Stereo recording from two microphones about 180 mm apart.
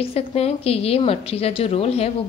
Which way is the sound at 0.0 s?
35° left (ahead or behind).